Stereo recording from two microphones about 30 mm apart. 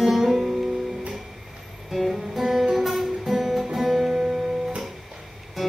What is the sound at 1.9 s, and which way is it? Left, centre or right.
Music, centre.